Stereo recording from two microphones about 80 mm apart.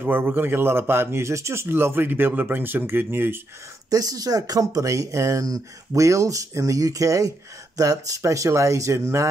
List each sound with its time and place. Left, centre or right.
0.0 s a man's voice: right
3.9 s speech: right